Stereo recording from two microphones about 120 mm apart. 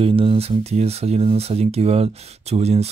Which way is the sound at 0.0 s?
50° right (ahead or behind).